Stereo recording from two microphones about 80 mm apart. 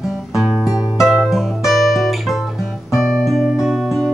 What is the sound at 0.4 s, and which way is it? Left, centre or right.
Music, centre.